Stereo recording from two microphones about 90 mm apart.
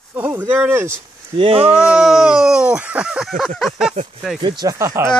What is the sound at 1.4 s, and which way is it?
Speech, 90° right.